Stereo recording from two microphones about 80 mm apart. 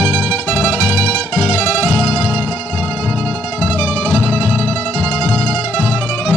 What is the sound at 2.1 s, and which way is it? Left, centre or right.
Music, left.